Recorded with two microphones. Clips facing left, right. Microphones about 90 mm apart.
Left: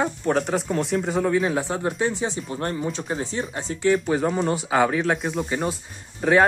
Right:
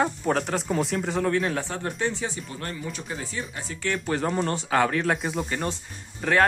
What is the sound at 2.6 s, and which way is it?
Speech, 40° left (ahead or behind).